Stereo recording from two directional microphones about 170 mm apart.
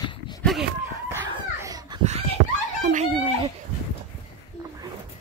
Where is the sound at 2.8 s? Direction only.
45° right (ahead or behind).